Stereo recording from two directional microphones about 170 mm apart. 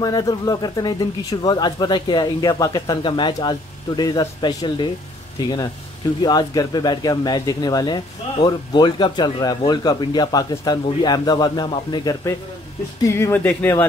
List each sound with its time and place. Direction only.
0.0 s speech: 25° left (ahead or behind)